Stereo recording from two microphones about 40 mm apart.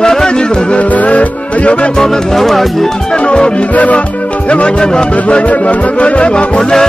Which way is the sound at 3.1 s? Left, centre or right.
Left.